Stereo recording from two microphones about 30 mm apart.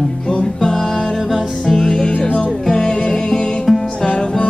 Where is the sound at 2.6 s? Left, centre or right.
Left.